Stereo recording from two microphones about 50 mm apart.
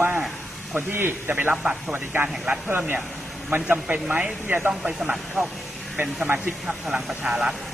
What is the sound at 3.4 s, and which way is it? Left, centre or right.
A man's voice, right.